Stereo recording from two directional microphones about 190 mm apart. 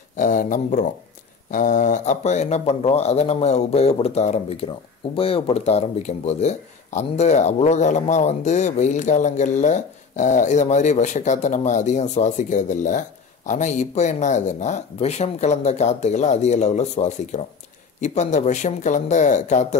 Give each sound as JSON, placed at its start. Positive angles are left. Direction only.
{"t": 0.1, "sound": "speech", "side_deg": 40}